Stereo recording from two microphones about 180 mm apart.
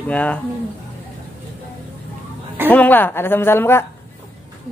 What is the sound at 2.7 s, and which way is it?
Speech, 10° left (ahead or behind).